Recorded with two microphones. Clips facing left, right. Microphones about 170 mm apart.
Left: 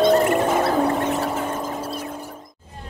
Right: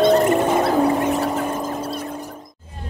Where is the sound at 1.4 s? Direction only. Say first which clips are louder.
Right 2 dB; 10° right (ahead or behind).